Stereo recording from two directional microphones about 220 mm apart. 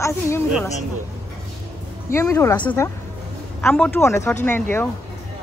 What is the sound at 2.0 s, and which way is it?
A woman's voice, 10° left (ahead or behind).